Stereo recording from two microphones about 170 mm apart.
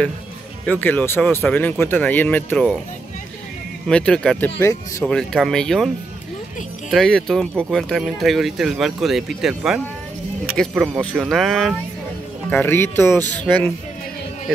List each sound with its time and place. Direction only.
0.7 s speech: 10° left (ahead or behind)
3.8 s speech: 5° left (ahead or behind)
4.6 s speech: 15° left (ahead or behind)
5.0 s speech: 5° left (ahead or behind)
6.9 s speech: centre (ahead or behind)
12.4 s speech: 10° left (ahead or behind)